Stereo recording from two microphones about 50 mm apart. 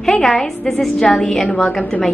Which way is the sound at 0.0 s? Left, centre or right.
Centre.